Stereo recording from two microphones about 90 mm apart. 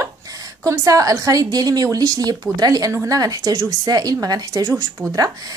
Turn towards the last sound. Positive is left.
turn(degrees=-40)  # may be behind; listen again after turning